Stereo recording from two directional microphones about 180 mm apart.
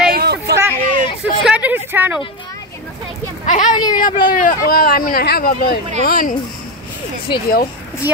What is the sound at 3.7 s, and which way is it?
Speech, 25° left (ahead or behind).